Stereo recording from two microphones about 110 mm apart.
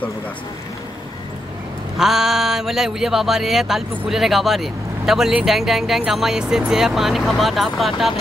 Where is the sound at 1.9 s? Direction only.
5° right (ahead or behind).